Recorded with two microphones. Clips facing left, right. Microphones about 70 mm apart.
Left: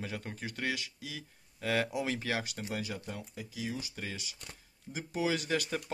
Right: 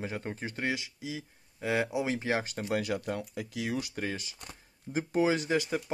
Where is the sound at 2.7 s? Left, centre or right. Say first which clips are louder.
Right 9 dB; right.